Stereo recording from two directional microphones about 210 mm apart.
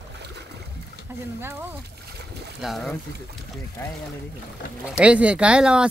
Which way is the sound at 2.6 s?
Centre (ahead or behind).